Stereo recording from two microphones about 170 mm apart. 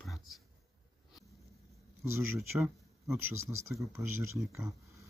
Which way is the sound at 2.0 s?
15° right (ahead or behind).